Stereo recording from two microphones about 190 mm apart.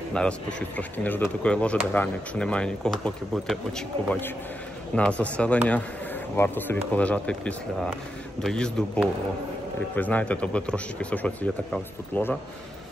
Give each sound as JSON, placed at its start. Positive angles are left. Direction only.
{"t": 0.1, "sound": "speech", "side_deg": 5}